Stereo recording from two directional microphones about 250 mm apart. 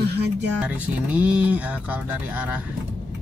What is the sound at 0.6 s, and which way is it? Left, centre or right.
Speech, centre.